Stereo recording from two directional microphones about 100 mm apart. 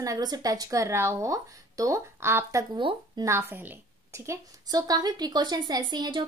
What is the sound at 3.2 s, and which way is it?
A woman's voice, 25° right (ahead or behind).